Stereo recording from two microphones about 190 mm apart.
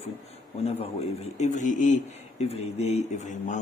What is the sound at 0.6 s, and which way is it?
A man's voice, 35° left (ahead or behind).